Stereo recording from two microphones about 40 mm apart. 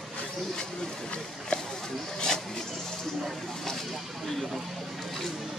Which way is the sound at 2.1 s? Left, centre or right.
Centre.